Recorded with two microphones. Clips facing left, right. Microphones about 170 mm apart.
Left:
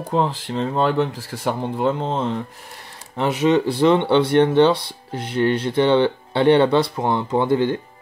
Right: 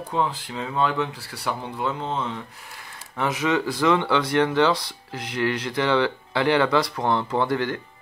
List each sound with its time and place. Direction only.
0.1 s speech: 45° left (ahead or behind)
3.2 s speech: 30° left (ahead or behind)